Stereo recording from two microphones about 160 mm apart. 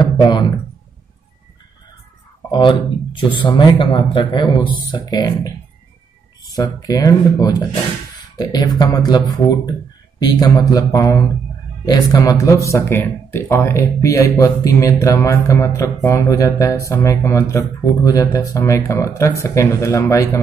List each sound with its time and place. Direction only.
0.0 s speech: 30° left (ahead or behind)
2.5 s speech: 30° left (ahead or behind)
6.5 s speech: 25° left (ahead or behind)